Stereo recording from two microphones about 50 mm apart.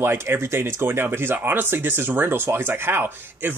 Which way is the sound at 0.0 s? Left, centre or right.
Right.